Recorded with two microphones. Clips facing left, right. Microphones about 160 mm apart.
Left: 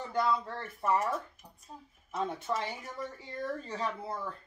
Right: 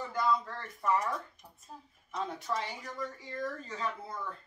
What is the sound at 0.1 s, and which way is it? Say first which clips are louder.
Speech: left 1 dB; 25° left (ahead or behind).